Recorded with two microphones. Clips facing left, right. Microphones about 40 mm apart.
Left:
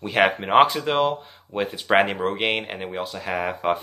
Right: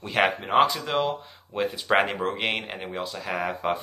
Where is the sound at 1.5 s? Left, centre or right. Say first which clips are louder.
Left 3 dB; centre.